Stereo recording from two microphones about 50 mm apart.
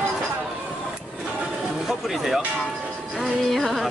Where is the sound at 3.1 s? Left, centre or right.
Centre.